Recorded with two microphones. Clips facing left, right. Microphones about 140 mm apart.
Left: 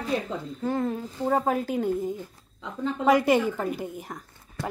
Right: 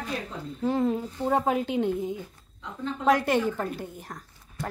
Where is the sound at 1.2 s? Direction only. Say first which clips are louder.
Left 2 dB; 10° right (ahead or behind).